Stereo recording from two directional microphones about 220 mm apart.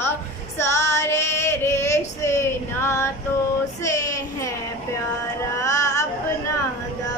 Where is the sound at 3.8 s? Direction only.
15° left (ahead or behind).